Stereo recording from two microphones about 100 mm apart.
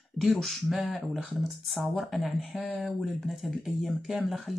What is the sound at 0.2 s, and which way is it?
Speech, centre (ahead or behind).